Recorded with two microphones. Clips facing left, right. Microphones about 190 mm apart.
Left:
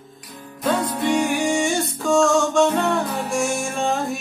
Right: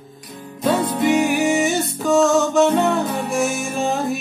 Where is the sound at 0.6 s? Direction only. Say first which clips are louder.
Right 3 dB; 25° right (ahead or behind).